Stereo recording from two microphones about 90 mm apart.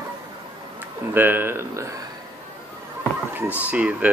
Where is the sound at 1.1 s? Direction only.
20° right (ahead or behind).